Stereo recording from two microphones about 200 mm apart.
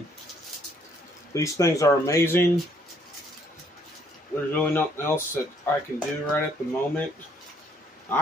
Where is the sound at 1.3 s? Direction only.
15° left (ahead or behind).